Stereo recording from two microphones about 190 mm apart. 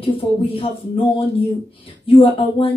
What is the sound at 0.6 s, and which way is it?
A woman's voice, 30° left (ahead or behind).